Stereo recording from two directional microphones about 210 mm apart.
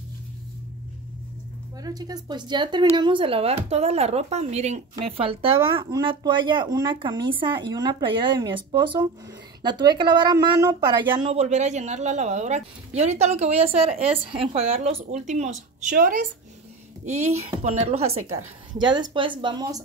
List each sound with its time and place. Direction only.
1.8 s speech: 20° right (ahead or behind)